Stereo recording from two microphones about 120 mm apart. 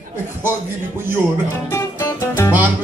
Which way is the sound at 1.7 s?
25° left (ahead or behind).